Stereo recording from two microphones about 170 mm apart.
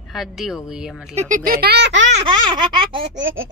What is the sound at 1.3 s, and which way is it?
Speech, 60° right (ahead or behind).